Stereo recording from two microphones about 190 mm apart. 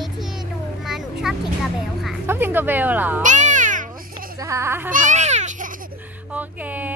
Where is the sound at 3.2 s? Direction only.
40° right (ahead or behind).